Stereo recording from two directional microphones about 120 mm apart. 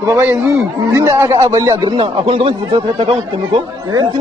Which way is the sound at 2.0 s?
50° right (ahead or behind).